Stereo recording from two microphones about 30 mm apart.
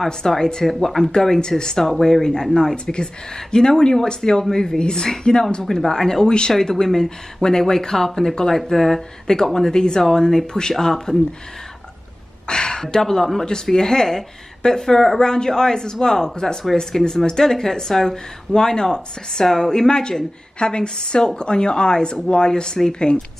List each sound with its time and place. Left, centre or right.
0.4 s speech: left
6.2 s speech: left
6.7 s speech: centre
9.3 s speech: left
12.4 s speech: left
19.4 s speech: centre
19.7 s speech: left